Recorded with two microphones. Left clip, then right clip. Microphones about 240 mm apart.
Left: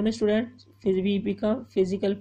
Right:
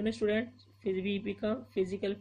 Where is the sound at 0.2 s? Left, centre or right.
Centre.